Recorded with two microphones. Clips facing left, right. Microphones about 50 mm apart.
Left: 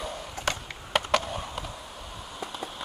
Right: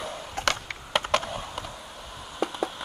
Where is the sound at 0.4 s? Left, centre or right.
Right.